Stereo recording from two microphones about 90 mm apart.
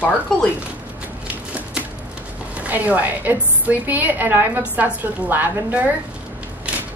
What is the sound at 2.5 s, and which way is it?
A woman's voice, 15° right (ahead or behind).